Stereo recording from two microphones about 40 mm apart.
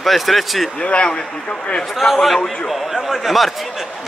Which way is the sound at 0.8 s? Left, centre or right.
Left.